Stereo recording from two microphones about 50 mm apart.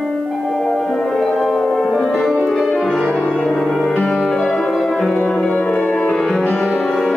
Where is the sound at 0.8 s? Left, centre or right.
Centre.